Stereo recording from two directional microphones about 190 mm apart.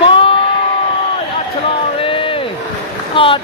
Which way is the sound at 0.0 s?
30° left (ahead or behind).